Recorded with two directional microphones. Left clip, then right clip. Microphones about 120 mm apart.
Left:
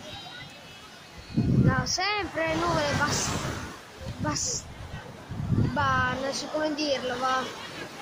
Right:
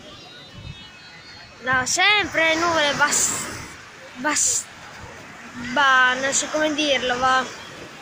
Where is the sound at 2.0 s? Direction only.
30° right (ahead or behind).